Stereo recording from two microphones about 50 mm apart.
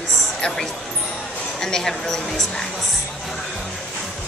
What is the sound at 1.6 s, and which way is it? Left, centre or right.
A woman's voice, centre.